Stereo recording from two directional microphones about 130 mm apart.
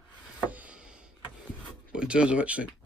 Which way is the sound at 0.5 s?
10° right (ahead or behind).